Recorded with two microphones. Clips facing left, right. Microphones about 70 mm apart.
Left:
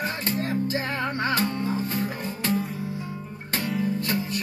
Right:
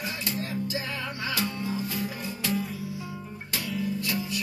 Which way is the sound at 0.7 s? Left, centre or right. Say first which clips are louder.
Left 6 dB; left.